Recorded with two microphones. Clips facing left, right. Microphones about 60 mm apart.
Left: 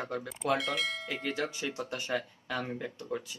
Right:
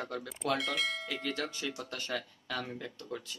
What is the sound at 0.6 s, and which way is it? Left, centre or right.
Speech, centre.